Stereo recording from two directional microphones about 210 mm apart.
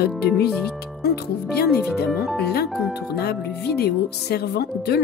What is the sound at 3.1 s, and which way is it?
Speech, 50° left (ahead or behind).